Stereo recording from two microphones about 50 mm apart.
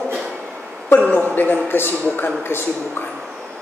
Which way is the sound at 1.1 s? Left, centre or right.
Left.